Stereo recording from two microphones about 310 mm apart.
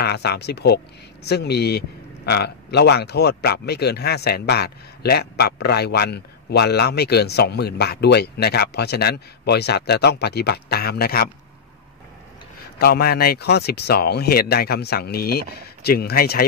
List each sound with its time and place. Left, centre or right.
0.0 s speech: left
12.7 s speech: left